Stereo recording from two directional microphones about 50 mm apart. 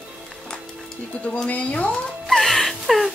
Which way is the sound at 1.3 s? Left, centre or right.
Left.